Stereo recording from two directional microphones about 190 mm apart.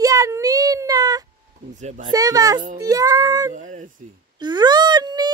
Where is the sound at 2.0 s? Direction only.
20° right (ahead or behind).